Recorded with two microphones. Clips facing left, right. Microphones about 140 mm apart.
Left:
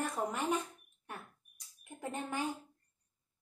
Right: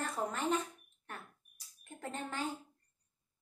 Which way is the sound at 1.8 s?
10° left (ahead or behind).